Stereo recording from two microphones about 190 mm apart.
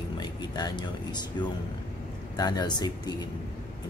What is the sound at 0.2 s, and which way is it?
Speech, 20° left (ahead or behind).